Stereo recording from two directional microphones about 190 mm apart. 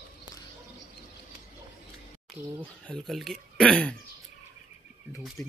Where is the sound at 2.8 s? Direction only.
Centre (ahead or behind).